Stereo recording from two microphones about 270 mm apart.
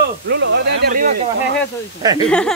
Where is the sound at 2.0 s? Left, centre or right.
Centre.